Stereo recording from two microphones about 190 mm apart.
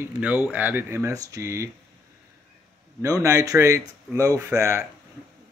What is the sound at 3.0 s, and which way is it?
Speech, 15° right (ahead or behind).